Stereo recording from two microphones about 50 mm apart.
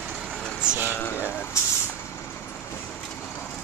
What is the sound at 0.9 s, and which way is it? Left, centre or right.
Speech, left.